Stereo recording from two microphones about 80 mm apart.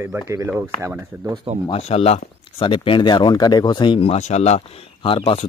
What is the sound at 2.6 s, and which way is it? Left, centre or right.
Speech, left.